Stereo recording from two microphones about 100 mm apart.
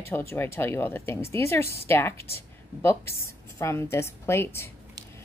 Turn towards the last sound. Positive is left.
turn(degrees=25)  # may be behind; listen again after turning